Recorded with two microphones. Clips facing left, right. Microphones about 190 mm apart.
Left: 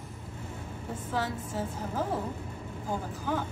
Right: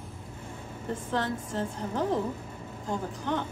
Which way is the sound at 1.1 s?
5° left (ahead or behind).